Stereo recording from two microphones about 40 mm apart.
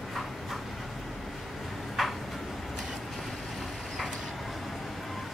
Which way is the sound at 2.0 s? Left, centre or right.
Centre.